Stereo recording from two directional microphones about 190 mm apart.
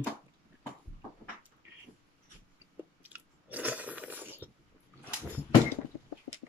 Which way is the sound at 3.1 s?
10° right (ahead or behind).